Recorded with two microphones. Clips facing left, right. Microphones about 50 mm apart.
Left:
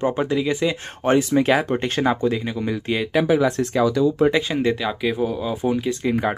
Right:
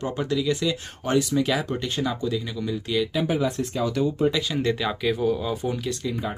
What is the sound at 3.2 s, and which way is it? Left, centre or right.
Speech, left.